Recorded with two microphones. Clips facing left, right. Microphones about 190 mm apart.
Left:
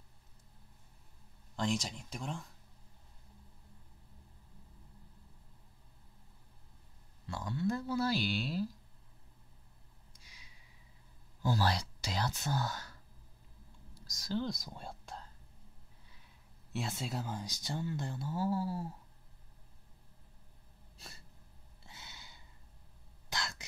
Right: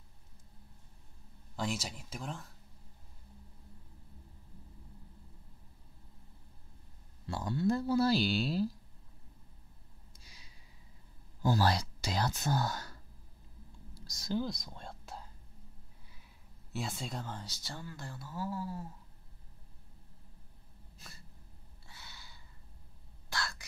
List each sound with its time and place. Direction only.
1.6 s speech: 5° right (ahead or behind)
7.2 s speech: 35° right (ahead or behind)
11.4 s speech: 45° right (ahead or behind)
14.0 s a sound: 30° right (ahead or behind)
14.4 s speech: centre (ahead or behind)
16.7 s speech: centre (ahead or behind); by 18.9 s 30° left (ahead or behind)
21.8 s a sound: 20° left (ahead or behind)
23.3 s throat clearing: 20° left (ahead or behind)